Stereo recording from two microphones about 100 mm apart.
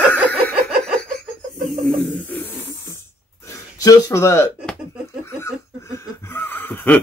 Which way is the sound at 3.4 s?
30° left (ahead or behind).